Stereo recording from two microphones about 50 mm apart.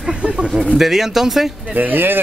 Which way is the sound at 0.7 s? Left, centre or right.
Centre.